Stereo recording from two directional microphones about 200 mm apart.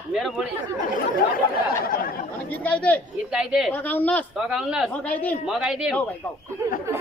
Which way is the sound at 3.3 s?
5° right (ahead or behind).